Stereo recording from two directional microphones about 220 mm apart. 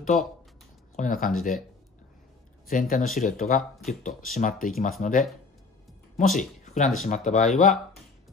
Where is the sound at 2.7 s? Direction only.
40° left (ahead or behind).